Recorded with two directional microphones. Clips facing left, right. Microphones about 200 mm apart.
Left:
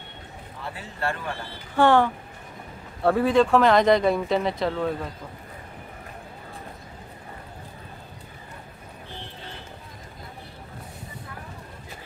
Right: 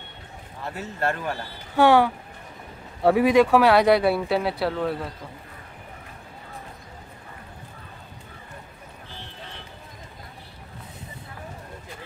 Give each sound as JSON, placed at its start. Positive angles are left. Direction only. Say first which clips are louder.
{"t": 0.7, "sound": "speech", "louder": "right 4 dB", "side_deg": -45}
{"t": 1.8, "sound": "speech", "louder": "right 1 dB", "side_deg": -10}